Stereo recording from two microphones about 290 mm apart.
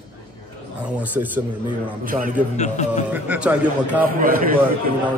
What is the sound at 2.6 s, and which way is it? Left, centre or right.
Speech, left.